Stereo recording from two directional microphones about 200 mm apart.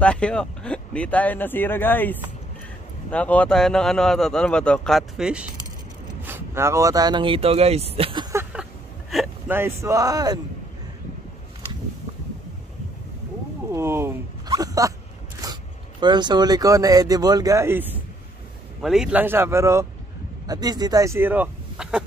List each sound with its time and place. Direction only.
0.0 s speech: 5° left (ahead or behind); by 8.6 s 15° right (ahead or behind)
9.1 s a sound: centre (ahead or behind)
9.6 s speech: 15° right (ahead or behind)
13.7 s a sound: 15° right (ahead or behind)
15.4 s zipper: 20° right (ahead or behind)
16.0 s speech: 20° right (ahead or behind)